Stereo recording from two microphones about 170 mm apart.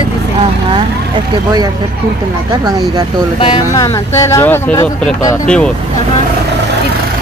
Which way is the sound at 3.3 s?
30° left (ahead or behind).